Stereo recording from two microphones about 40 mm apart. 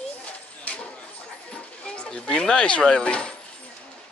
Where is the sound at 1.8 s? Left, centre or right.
Left.